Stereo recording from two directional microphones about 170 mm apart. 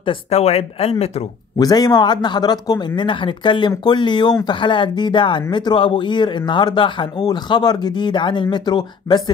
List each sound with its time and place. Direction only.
0.0 s speech: 35° left (ahead or behind)
1.6 s speech: 20° left (ahead or behind)